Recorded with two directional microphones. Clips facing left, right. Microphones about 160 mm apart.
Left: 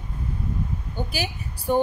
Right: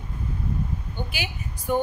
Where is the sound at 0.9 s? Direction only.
35° left (ahead or behind).